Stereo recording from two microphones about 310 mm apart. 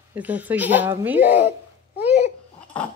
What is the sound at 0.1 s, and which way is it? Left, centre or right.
Speech, centre.